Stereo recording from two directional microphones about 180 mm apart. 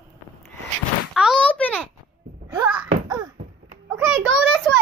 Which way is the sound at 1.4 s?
10° left (ahead or behind).